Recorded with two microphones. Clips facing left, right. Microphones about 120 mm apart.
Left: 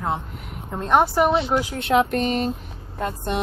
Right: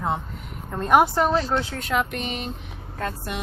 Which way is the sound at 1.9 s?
35° left (ahead or behind).